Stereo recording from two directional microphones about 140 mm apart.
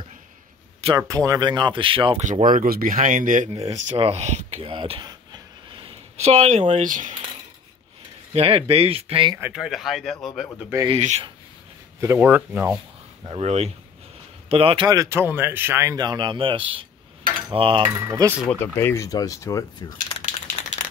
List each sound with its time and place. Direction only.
0.9 s speech: 25° right (ahead or behind); by 2.1 s 40° right (ahead or behind)
2.2 s speech: 65° right (ahead or behind)
3.5 s speech: 45° right (ahead or behind); by 7.2 s 65° right (ahead or behind)
8.3 s speech: 45° right (ahead or behind)
9.4 s speech: 5° right (ahead or behind)
11.0 s speech: 55° right (ahead or behind)
12.0 s speech: 15° right (ahead or behind)
13.3 s speech: 50° right (ahead or behind)
14.5 s speech: 40° right (ahead or behind)
14.9 s speech: 20° right (ahead or behind); by 16.8 s 40° right (ahead or behind)
17.3 s cutlery: 40° right (ahead or behind)
17.9 s speech: 20° right (ahead or behind)
18.6 s speech: 15° left (ahead or behind)